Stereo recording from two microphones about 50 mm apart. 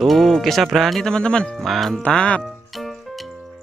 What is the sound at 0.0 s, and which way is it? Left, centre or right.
Speech, centre.